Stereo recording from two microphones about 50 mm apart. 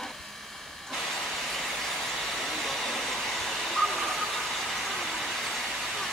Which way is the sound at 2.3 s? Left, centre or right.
Centre.